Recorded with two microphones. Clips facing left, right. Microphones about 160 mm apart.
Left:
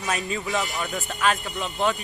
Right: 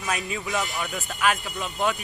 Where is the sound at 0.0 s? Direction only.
Centre (ahead or behind).